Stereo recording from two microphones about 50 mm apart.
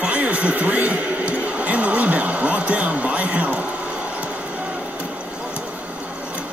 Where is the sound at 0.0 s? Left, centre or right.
Right.